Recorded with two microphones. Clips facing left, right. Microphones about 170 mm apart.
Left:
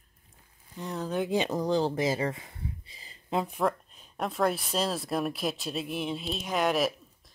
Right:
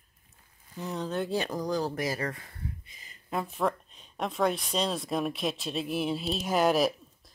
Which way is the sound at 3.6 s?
5° left (ahead or behind).